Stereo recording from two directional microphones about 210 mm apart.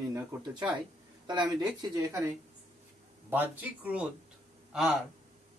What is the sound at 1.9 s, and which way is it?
Speech, 15° right (ahead or behind).